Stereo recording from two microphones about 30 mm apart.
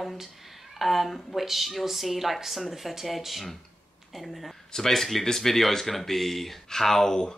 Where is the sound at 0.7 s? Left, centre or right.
Centre.